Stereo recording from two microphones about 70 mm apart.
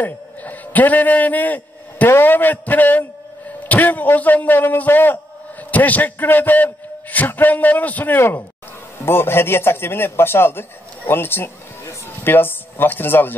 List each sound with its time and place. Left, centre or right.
0.0 s a man's voice: left